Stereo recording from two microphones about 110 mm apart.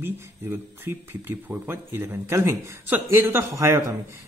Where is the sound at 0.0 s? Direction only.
20° right (ahead or behind).